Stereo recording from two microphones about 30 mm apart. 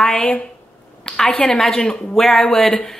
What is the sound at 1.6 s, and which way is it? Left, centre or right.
A woman's voice, centre.